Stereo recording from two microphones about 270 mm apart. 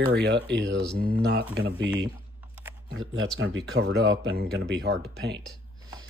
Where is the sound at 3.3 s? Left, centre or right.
Right.